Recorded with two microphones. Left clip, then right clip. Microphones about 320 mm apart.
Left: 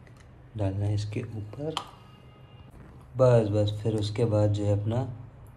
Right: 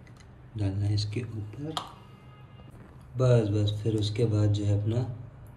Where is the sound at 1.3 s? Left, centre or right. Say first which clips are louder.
Left 5 dB; left.